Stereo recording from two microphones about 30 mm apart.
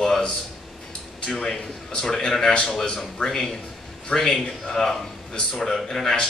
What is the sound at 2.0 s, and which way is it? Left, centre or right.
Speech, centre.